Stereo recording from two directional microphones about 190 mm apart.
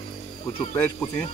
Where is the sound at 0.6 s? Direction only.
10° left (ahead or behind).